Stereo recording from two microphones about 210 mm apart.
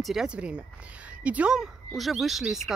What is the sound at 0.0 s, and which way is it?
Speech, centre (ahead or behind).